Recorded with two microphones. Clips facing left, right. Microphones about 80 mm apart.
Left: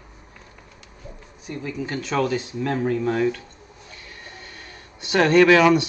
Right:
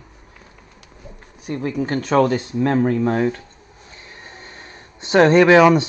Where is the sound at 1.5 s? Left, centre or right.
Right.